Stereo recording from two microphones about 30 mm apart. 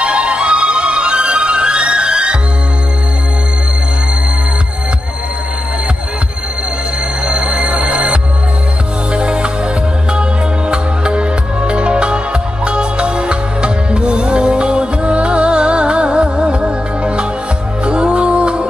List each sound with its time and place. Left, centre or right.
0.0 s music: right
7.2 s music: right
10.7 s music: right